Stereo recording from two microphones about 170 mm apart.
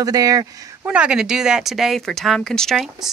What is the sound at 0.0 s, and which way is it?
Speech, 20° right (ahead or behind).